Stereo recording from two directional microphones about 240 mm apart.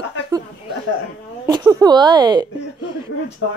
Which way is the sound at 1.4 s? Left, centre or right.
Centre.